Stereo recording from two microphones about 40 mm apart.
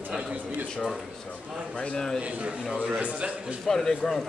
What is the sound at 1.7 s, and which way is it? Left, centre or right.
Speech, left.